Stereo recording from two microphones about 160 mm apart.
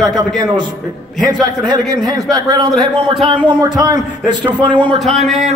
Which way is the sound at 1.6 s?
25° right (ahead or behind).